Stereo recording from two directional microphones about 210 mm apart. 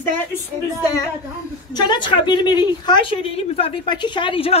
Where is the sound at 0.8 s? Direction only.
15° left (ahead or behind).